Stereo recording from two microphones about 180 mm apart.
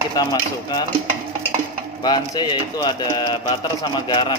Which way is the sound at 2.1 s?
25° left (ahead or behind).